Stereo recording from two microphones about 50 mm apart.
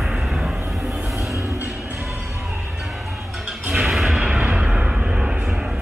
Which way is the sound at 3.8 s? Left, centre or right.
Centre.